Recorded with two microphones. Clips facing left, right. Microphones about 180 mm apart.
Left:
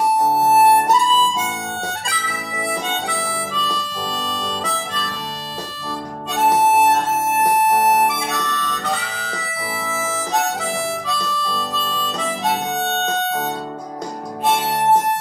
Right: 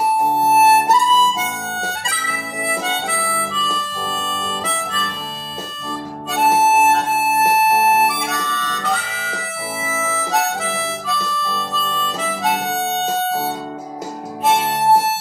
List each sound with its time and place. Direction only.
0.5 s violin: centre (ahead or behind)
2.0 s harmonica: 5° right (ahead or behind)
4.4 s harmonica: centre (ahead or behind)
6.7 s harmonica: centre (ahead or behind)
7.6 s music: 20° left (ahead or behind)
7.9 s harmonica: centre (ahead or behind)
14.4 s music: 5° right (ahead or behind)